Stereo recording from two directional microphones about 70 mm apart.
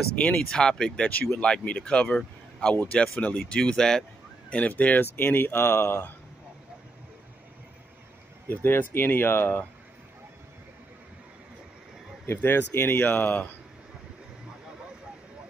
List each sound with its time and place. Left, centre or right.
0.1 s speech: centre
4.5 s speech: left
8.5 s speech: left
12.4 s speech: left